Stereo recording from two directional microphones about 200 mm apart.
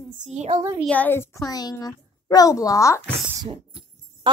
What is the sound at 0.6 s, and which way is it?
Speech, 15° right (ahead or behind).